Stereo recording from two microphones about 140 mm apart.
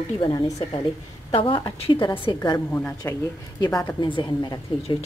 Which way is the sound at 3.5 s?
25° left (ahead or behind).